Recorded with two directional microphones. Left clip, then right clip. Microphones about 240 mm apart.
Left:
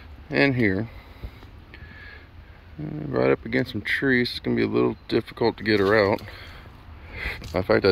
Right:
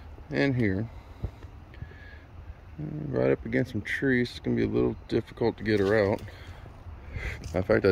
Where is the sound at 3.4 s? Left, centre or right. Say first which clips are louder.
Left 4 dB; centre.